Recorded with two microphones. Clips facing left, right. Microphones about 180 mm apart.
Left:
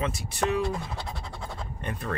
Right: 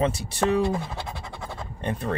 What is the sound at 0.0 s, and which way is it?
Speech, 30° right (ahead or behind).